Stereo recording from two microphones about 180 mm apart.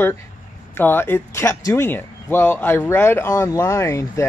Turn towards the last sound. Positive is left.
turn(degrees=15)  # may be behind; listen again after turning